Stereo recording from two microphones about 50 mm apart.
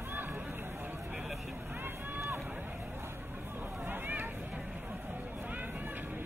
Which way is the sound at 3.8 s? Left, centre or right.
Right.